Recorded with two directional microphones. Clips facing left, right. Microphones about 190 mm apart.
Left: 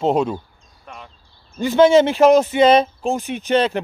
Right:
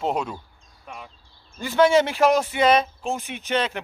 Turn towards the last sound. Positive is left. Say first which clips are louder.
# left 7 dB
turn(degrees=35)  # may be behind; listen again after turning